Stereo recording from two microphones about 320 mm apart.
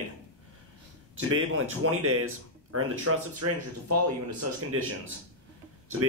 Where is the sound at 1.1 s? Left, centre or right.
Right.